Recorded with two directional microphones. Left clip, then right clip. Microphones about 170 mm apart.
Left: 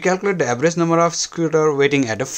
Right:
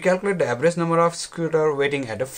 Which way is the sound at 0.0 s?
55° left (ahead or behind).